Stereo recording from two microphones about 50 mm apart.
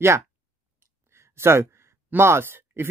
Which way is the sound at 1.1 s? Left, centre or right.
Right.